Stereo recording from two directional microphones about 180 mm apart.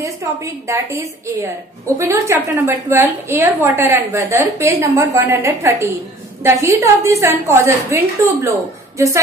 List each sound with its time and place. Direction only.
0.0 s a woman's voice: 15° right (ahead or behind)